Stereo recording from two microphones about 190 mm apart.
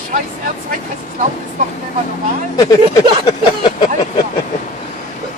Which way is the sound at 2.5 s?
20° left (ahead or behind).